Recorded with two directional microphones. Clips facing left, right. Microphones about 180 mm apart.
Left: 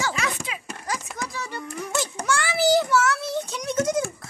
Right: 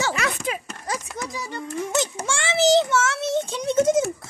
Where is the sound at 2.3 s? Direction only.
25° right (ahead or behind).